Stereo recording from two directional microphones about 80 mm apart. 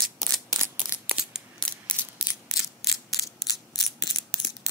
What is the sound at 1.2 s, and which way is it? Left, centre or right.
Mechanisms, centre.